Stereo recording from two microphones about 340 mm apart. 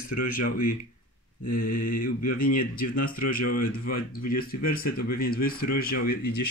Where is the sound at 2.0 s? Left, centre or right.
Left.